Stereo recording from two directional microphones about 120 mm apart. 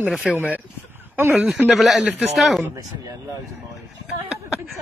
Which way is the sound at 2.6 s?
30° right (ahead or behind).